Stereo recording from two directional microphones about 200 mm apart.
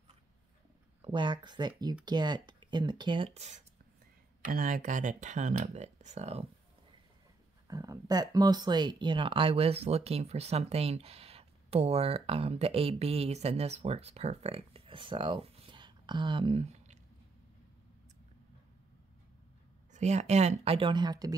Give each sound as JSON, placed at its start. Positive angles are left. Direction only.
{"t": 1.0, "sound": "speech", "side_deg": -25}
{"t": 4.4, "sound": "speech", "side_deg": -45}
{"t": 7.6, "sound": "speech", "side_deg": -20}
{"t": 19.9, "sound": "speech", "side_deg": -35}